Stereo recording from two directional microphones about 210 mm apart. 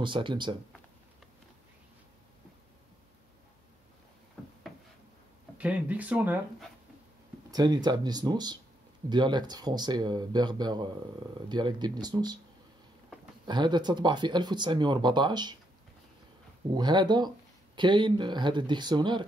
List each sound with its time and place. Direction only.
0.0 s speech: 25° right (ahead or behind)
4.4 s wood: 5° left (ahead or behind)
5.6 s speech: 5° right (ahead or behind)
7.5 s speech: 20° right (ahead or behind)
13.5 s speech: 20° right (ahead or behind)
16.7 s speech: 20° right (ahead or behind)